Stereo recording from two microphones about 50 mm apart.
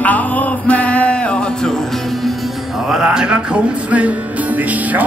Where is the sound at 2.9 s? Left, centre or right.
Centre.